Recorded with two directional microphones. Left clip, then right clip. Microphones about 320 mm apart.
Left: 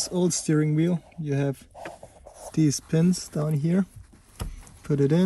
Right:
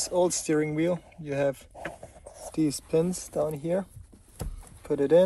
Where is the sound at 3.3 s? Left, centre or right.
Left.